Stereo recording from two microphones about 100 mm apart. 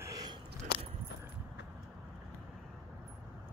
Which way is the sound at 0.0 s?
40° right (ahead or behind).